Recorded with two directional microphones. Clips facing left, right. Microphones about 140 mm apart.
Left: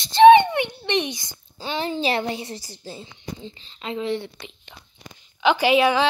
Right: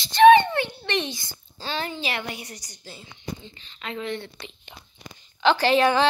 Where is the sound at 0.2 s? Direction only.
20° left (ahead or behind).